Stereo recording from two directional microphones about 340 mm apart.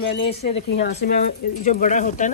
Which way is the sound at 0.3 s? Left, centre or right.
Left.